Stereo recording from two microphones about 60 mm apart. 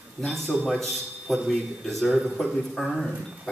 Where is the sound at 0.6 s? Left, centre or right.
Centre.